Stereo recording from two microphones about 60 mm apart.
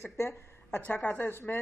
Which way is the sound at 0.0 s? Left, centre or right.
Left.